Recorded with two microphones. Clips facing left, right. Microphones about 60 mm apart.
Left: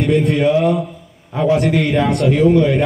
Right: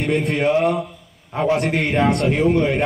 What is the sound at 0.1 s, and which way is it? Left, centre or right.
A man's voice, right.